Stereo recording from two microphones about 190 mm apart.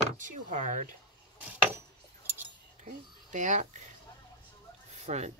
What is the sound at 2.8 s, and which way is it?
Speech, 40° right (ahead or behind).